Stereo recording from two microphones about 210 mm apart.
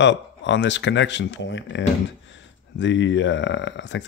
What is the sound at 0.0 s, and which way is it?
Speech, 60° left (ahead or behind).